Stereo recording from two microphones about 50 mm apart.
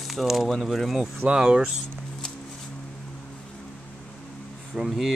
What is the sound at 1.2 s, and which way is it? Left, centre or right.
Speech, centre.